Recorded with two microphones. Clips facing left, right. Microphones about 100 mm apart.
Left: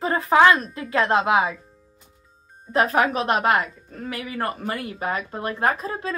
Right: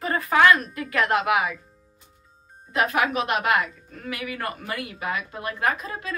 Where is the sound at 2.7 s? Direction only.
35° left (ahead or behind).